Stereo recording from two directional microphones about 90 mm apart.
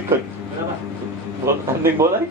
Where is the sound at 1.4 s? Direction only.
30° right (ahead or behind).